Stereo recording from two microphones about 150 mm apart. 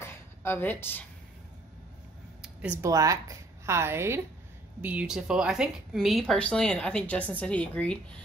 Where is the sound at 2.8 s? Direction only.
20° right (ahead or behind).